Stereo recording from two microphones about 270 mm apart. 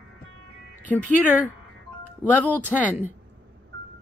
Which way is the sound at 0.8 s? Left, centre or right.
Centre.